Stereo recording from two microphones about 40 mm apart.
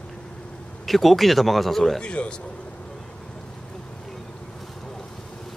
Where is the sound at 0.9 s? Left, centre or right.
Centre.